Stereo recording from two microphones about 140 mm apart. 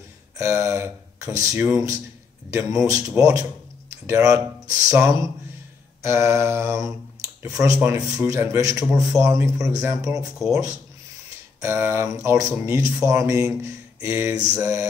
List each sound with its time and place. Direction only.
0.4 s speech: 20° right (ahead or behind)